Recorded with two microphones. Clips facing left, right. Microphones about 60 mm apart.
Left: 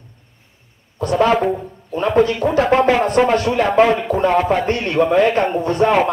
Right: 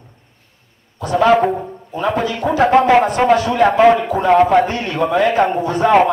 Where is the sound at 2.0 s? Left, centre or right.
Left.